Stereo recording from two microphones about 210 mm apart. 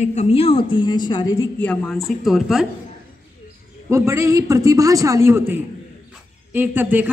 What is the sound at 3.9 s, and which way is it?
A man's voice, 15° right (ahead or behind).